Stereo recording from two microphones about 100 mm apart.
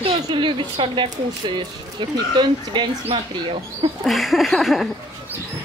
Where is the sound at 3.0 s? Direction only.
60° right (ahead or behind).